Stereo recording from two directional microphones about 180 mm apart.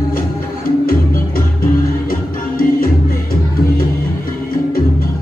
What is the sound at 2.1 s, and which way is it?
Music, 55° left (ahead or behind).